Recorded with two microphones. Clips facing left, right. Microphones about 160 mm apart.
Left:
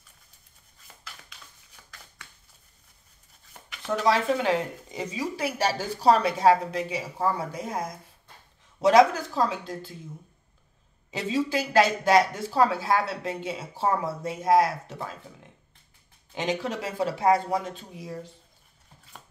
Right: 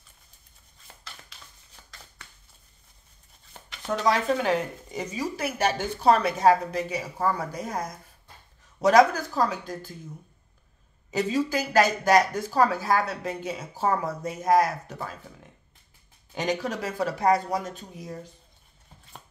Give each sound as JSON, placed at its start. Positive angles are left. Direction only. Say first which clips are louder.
{"t": 1.8, "sound": "a sound", "louder": "right 1 dB", "side_deg": -30}
{"t": 4.0, "sound": "speech", "louder": "even", "side_deg": 25}
{"t": 5.5, "sound": "speech", "louder": "right 1 dB", "side_deg": 35}
{"t": 11.1, "sound": "speech", "louder": "right 2 dB", "side_deg": 25}
{"t": 16.3, "sound": "speech", "louder": "right 1 dB", "side_deg": 25}